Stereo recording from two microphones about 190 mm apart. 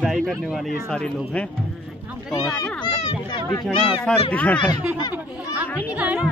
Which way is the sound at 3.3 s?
20° left (ahead or behind).